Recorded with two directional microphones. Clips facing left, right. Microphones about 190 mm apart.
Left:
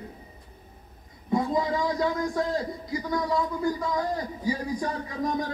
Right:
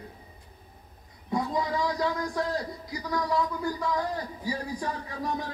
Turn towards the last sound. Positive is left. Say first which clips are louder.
# left 4 dB
turn(degrees=15)  # may be behind; listen again after turning